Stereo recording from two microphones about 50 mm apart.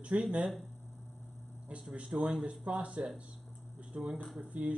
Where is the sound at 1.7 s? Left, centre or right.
Right.